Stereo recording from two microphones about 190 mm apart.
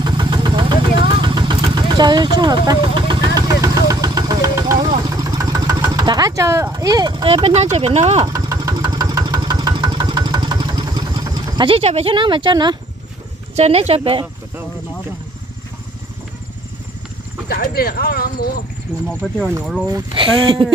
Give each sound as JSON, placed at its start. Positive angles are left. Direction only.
{"t": 0.0, "sound": "vehicle", "side_deg": -25}
{"t": 7.7, "sound": "speech", "side_deg": -35}
{"t": 8.3, "sound": "engine", "side_deg": -20}
{"t": 13.6, "sound": "speech", "side_deg": -35}
{"t": 17.5, "sound": "speech", "side_deg": 50}
{"t": 19.0, "sound": "speech", "side_deg": 5}
{"t": 19.9, "sound": "speech", "side_deg": -25}